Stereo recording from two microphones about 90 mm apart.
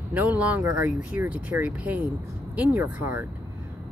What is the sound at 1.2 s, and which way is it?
Speech, 30° right (ahead or behind).